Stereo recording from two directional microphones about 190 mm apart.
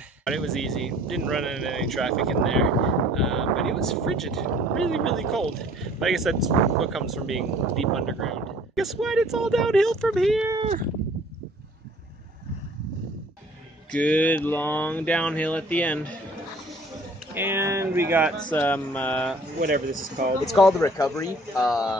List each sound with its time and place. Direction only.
0.2 s speech: centre (ahead or behind)
13.9 s mantra: 5° left (ahead or behind)
17.3 s speech: 10° right (ahead or behind)
18.5 s mantra: 10° left (ahead or behind)
19.6 s speech: 50° right (ahead or behind)
20.4 s speech: centre (ahead or behind)
20.8 s mantra: 15° left (ahead or behind)